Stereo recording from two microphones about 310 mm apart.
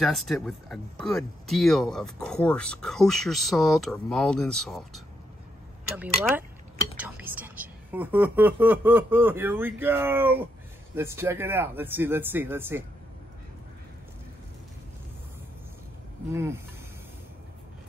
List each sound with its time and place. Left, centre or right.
0.0 s a woman's voice: centre
16.3 s a woman's voice: centre